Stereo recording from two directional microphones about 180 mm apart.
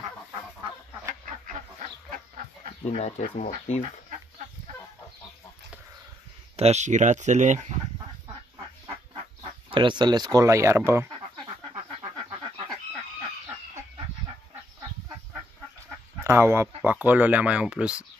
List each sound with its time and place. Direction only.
2.9 s speech: 40° left (ahead or behind)
6.5 s speech: 35° right (ahead or behind)
9.4 s speech: 25° right (ahead or behind)
16.2 s speech: 15° right (ahead or behind)